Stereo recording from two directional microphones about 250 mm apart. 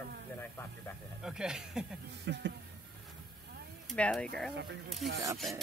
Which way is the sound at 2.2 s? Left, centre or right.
Right.